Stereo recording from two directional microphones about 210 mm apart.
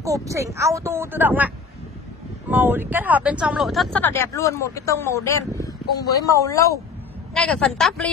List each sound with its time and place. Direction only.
0.0 s speech: 15° right (ahead or behind)
2.5 s speech: 10° right (ahead or behind); by 6.8 s 15° left (ahead or behind)
7.3 s speech: 5° left (ahead or behind)